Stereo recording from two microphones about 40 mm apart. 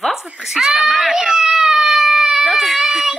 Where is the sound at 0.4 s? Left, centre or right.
Centre.